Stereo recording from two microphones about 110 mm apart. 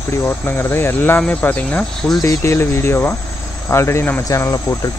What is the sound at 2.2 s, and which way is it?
Speech, 25° left (ahead or behind).